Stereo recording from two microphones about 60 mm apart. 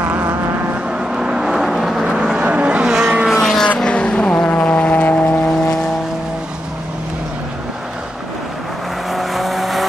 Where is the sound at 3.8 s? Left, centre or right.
Centre.